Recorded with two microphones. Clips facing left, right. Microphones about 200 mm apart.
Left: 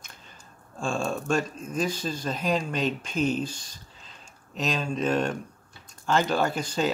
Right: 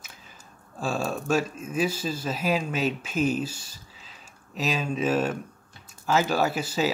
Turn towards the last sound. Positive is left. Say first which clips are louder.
# right 1 dB
turn(degrees=-5)  # may be behind; listen again after turning